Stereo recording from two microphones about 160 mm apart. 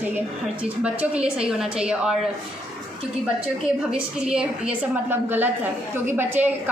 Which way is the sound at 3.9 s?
5° right (ahead or behind).